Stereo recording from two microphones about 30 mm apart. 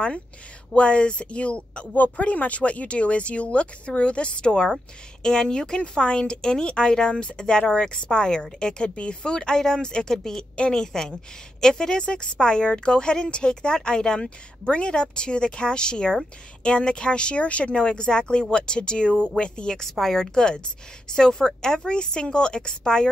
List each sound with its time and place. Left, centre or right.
0.7 s speech: left
2.1 s speech: left
4.5 s speech: left
5.8 s a woman's voice: left
17.5 s speech: left
17.7 s speech: left
19.7 s a woman's voice: centre
20.3 s speech: left